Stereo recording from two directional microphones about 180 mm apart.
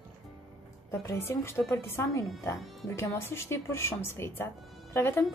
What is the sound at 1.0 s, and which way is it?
A woman's voice, 15° left (ahead or behind).